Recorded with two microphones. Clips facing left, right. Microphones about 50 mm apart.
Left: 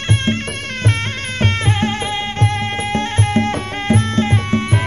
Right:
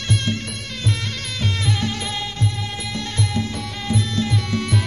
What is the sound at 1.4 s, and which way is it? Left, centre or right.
Music, left.